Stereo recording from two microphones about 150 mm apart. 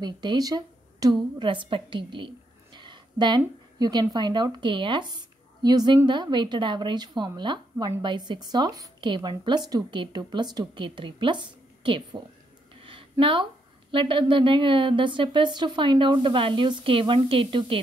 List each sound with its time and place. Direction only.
0.0 s a woman's voice: 30° right (ahead or behind)
13.2 s speech: 35° right (ahead or behind)